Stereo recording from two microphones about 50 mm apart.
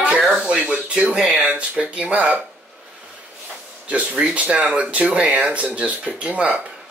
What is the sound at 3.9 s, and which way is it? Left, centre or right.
Speech, right.